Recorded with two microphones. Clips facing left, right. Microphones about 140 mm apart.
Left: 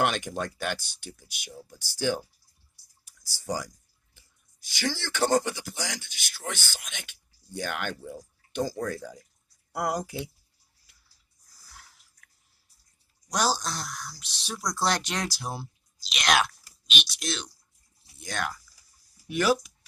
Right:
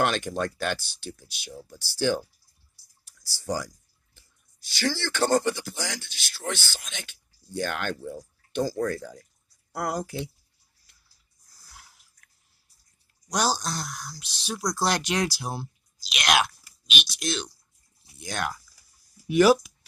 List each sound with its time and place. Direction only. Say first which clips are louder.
0.0 s speech: right 2 dB; 15° left (ahead or behind)
4.6 s speech: right 3 dB; 15° left (ahead or behind)
11.5 s a sound: right 1 dB; centre (ahead or behind)
13.3 s speech: right 1 dB; centre (ahead or behind)